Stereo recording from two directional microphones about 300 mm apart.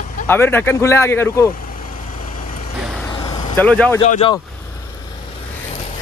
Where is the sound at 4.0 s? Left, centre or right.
Centre.